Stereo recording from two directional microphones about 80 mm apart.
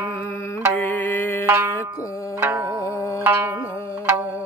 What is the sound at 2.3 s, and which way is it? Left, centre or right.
Music, right.